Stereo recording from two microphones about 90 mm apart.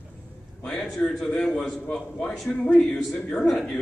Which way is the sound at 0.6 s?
10° left (ahead or behind).